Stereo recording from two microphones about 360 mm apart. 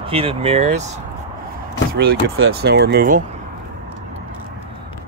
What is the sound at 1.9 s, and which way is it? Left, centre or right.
Speech, right.